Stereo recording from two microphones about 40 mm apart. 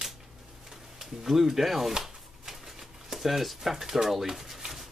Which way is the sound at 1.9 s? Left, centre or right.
Centre.